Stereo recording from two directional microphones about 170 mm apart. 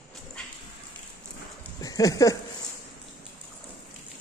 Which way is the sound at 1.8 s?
20° left (ahead or behind).